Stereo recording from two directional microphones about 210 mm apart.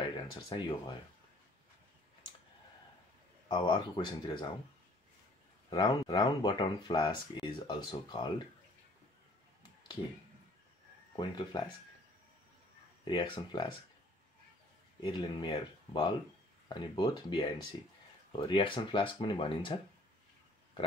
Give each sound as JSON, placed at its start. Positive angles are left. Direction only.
{"t": 0.0, "sound": "speech", "side_deg": 25}
{"t": 3.4, "sound": "speech", "side_deg": 20}
{"t": 5.7, "sound": "speech", "side_deg": 20}
{"t": 11.1, "sound": "speech", "side_deg": 20}
{"t": 13.0, "sound": "speech", "side_deg": 20}
{"t": 15.0, "sound": "speech", "side_deg": 20}